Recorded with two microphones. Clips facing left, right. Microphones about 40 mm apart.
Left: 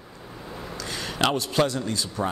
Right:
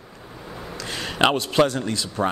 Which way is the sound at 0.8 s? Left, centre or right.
Right.